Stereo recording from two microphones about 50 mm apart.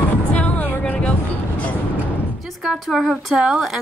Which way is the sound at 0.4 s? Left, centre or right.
Left.